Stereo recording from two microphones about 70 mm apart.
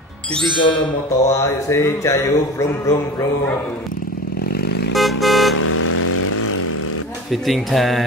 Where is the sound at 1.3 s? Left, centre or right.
Left.